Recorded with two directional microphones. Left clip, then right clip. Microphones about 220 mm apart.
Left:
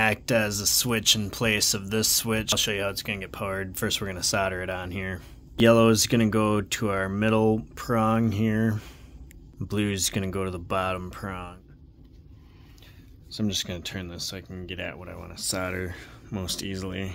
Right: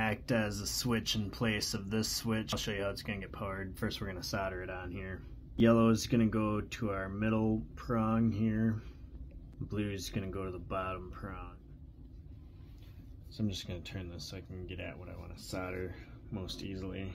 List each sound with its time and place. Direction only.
0.0 s speech: 35° left (ahead or behind); by 11.5 s 50° left (ahead or behind)
13.3 s speech: 45° left (ahead or behind)